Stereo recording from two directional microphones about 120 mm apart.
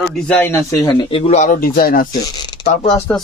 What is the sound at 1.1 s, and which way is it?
Speech, 60° left (ahead or behind).